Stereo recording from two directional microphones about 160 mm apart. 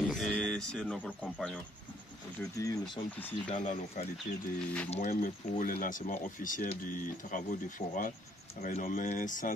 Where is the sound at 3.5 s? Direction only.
50° left (ahead or behind).